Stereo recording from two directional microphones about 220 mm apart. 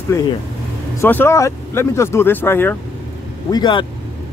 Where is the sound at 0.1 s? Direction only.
10° left (ahead or behind).